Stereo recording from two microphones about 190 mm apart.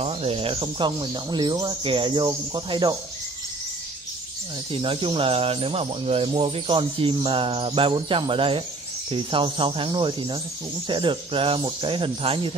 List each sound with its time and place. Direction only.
0.0 s speech: 30° right (ahead or behind)
4.7 s speech: 30° right (ahead or behind)